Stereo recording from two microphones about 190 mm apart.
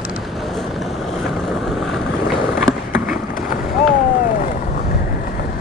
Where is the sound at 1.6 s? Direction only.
Centre (ahead or behind).